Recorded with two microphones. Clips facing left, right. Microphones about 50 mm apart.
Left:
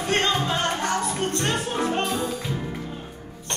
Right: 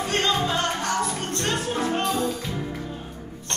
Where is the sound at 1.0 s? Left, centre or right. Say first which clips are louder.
Left 2 dB; centre.